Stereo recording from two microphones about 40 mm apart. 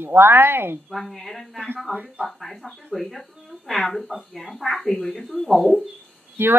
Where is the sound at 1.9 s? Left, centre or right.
Right.